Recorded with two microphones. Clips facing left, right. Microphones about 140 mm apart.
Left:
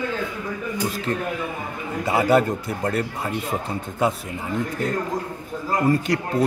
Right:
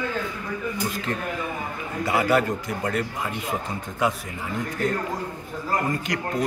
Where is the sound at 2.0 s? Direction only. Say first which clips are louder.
Left 3 dB; 25° left (ahead or behind).